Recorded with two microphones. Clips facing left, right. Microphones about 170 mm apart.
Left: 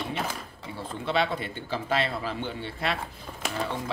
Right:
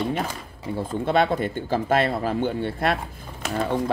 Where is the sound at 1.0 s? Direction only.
50° right (ahead or behind).